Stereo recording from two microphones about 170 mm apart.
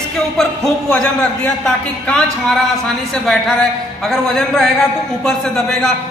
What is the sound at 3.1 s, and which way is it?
A man's voice, centre (ahead or behind).